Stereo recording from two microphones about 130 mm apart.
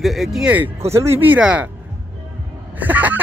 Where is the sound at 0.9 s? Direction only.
20° right (ahead or behind).